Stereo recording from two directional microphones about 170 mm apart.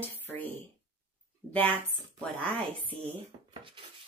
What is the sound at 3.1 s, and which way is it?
Speech, 30° right (ahead or behind).